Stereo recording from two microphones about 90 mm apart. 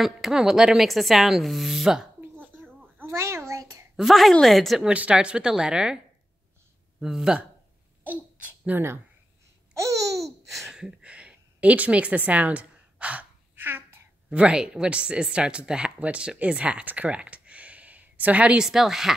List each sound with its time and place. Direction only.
0.0 s speech: 5° right (ahead or behind)
2.3 s a sound: 20° right (ahead or behind)
3.9 s speech: centre (ahead or behind)
4.9 s speech: 15° right (ahead or behind)
7.0 s speech: 5° right (ahead or behind)
8.0 s babbling: 20° right (ahead or behind)
9.8 s babbling: 35° right (ahead or behind)
10.5 s a sound: 5° right (ahead or behind); by 14.0 s 25° right (ahead or behind)
14.3 s speech: 10° right (ahead or behind)